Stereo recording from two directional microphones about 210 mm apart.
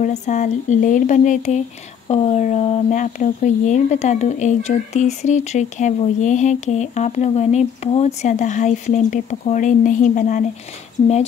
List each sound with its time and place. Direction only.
0.0 s speech: 35° left (ahead or behind)